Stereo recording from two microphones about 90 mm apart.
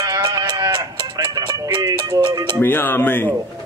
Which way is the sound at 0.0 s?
40° right (ahead or behind).